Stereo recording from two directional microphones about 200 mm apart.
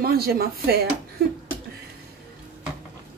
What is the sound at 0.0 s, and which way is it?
Speech, 50° right (ahead or behind).